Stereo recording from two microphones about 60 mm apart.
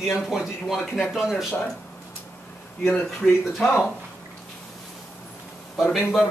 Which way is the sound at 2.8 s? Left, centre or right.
Centre.